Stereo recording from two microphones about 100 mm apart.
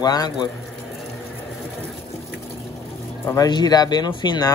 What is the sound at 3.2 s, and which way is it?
Speech, 40° left (ahead or behind).